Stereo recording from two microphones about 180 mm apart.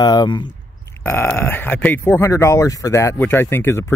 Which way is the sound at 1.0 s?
10° left (ahead or behind).